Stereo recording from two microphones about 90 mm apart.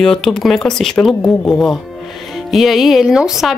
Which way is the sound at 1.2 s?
20° left (ahead or behind).